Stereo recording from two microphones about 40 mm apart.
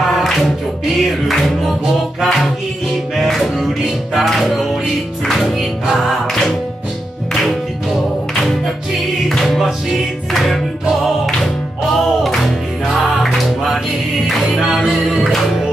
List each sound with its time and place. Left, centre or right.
0.1 s music: centre
2.2 s music: centre
10.3 s music: centre